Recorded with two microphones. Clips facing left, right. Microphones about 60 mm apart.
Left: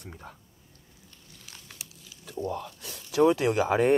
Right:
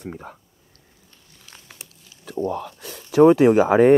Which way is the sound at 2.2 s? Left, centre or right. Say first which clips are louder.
Right 7 dB; right.